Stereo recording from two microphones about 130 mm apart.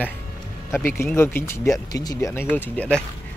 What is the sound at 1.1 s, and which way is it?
Speech, 20° left (ahead or behind).